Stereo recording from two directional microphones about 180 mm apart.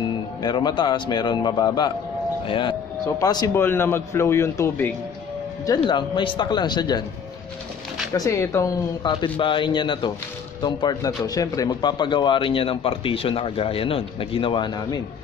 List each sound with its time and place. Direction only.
0.4 s a man's voice: 25° left (ahead or behind)
5.7 s speech: 25° left (ahead or behind)
8.1 s speech: 15° left (ahead or behind)